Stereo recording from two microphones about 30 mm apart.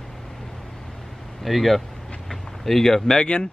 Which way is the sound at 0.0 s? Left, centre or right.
Centre.